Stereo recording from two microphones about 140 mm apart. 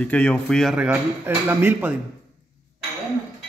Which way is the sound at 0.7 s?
10° right (ahead or behind).